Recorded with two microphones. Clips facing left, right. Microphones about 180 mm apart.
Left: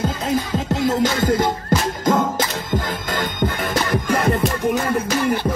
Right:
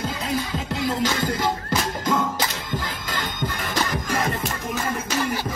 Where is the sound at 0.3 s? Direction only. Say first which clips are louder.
Left 6 dB; 45° left (ahead or behind).